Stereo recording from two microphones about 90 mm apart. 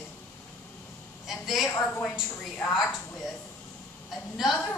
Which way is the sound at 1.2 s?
Centre (ahead or behind).